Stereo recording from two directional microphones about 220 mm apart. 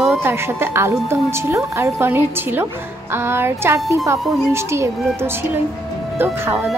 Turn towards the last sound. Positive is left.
turn(degrees=-10)  # may be behind; listen again after turning